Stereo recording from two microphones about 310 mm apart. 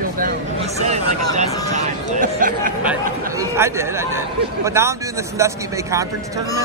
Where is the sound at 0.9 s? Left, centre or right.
Right.